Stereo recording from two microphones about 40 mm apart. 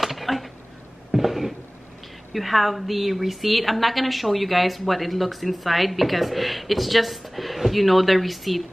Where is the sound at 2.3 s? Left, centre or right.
Centre.